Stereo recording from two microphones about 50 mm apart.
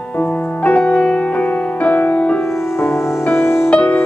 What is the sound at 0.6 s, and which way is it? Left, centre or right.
Music, left.